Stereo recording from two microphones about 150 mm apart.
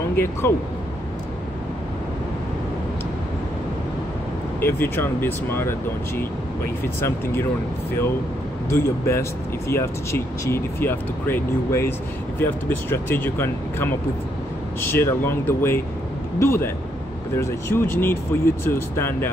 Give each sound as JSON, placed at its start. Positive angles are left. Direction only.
{"t": 0.1, "sound": "speech", "side_deg": 15}
{"t": 4.6, "sound": "speech", "side_deg": 15}
{"t": 8.6, "sound": "speech", "side_deg": 20}